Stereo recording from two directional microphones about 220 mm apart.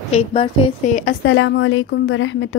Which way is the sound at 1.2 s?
60° left (ahead or behind).